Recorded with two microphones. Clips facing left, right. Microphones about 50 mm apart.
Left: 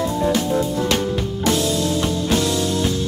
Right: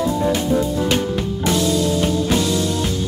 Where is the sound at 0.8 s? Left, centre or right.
Centre.